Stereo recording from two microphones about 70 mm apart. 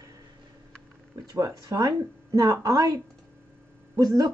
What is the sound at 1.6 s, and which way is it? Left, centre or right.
A woman's voice, right.